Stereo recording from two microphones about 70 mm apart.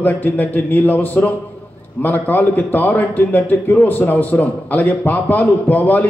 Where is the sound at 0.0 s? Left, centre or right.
Left.